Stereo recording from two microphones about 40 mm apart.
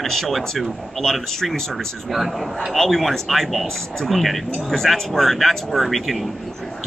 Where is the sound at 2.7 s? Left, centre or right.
Centre.